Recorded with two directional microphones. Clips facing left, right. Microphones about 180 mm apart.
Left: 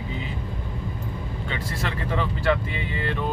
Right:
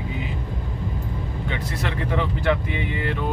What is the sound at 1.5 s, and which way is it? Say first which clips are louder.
Speech: right 1 dB; 20° right (ahead or behind).